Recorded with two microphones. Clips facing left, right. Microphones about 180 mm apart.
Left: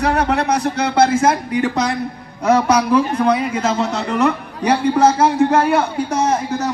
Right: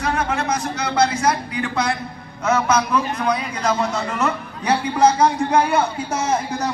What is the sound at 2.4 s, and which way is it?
A man's voice, 35° left (ahead or behind).